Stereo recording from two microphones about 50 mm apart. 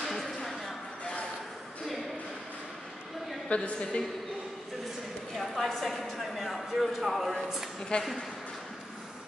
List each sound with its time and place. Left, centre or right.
0.0 s a sound: centre
3.4 s a woman's voice: left
5.3 s a woman's voice: centre
7.9 s a woman's voice: left